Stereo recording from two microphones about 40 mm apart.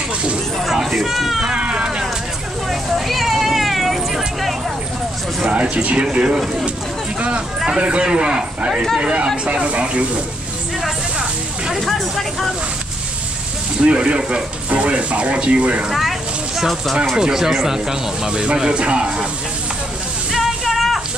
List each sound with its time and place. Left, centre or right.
0.9 s cat: centre
1.4 s cat: right
2.7 s vehicle: centre
5.4 s speech: right
7.2 s a sound: right
8.0 s speech: right
11.8 s speech: centre
13.7 s speech: right
15.9 s a sound: centre
17.1 s speech: centre
20.3 s a sound: centre